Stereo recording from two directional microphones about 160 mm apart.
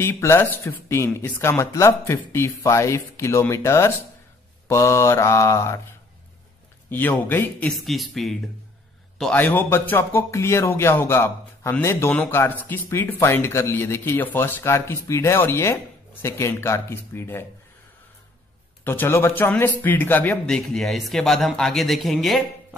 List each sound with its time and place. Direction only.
0.0 s speech: 15° left (ahead or behind)
6.9 s speech: 10° left (ahead or behind)
7.7 s a man's voice: centre (ahead or behind)
18.9 s a man's voice: 15° left (ahead or behind)